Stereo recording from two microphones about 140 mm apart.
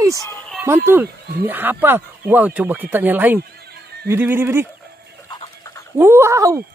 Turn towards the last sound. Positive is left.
turn(degrees=-20)  # may be behind; listen again after turning